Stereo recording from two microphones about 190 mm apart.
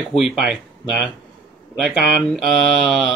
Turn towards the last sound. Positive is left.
turn(degrees=0)  # may be behind; listen again after turning